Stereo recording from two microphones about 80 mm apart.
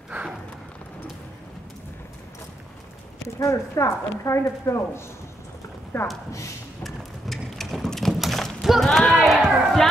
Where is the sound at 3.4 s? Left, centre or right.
Left.